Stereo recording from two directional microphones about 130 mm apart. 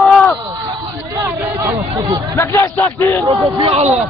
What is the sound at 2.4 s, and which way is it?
Speech, 20° left (ahead or behind).